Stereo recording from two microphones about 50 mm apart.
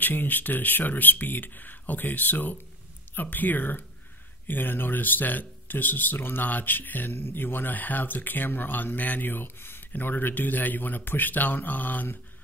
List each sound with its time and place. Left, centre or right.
0.0 s speech: left